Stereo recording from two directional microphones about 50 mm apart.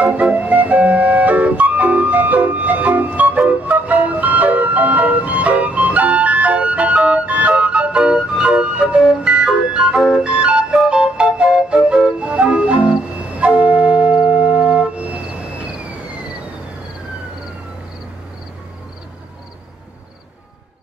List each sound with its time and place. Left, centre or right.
0.0 s music: right